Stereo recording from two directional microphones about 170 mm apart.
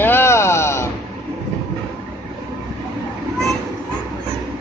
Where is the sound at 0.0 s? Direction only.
15° left (ahead or behind).